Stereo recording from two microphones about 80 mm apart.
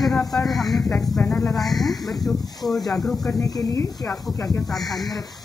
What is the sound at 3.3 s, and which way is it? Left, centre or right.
Speech, left.